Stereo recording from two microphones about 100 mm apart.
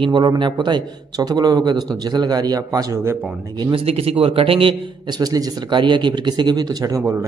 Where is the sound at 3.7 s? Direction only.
85° right; by 4.7 s 65° right (ahead or behind).